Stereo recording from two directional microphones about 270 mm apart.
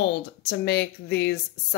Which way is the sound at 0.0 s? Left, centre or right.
Left.